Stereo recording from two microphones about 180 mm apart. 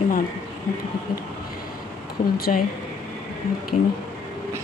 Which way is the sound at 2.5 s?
40° left (ahead or behind).